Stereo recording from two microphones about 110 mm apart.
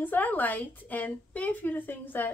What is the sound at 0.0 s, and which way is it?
A woman's voice, 15° left (ahead or behind).